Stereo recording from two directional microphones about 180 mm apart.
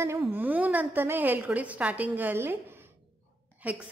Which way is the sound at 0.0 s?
15° right (ahead or behind).